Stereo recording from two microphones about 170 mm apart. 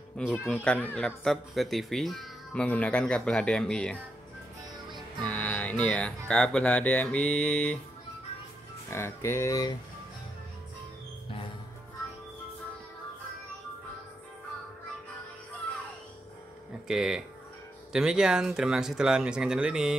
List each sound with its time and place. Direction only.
0.2 s speech: 5° left (ahead or behind)
5.2 s speech: 10° left (ahead or behind)
8.9 s speech: 15° left (ahead or behind)
16.8 s speech: 5° right (ahead or behind)